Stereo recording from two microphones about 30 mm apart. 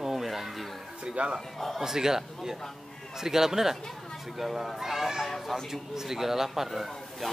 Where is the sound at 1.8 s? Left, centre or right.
Centre.